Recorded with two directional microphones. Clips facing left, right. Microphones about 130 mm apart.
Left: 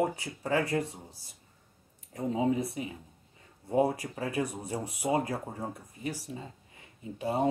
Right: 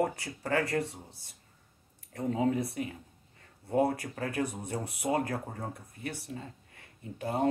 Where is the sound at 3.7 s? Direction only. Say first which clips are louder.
Left 1 dB; 15° left (ahead or behind).